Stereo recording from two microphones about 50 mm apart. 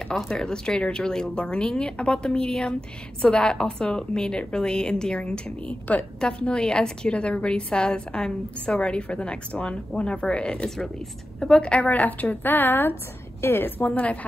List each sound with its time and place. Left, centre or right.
0.1 s a woman's voice: centre
11.9 s a woman's voice: left
13.8 s a woman's voice: left